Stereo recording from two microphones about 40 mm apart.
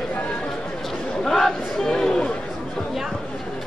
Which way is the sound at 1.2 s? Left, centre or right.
Centre.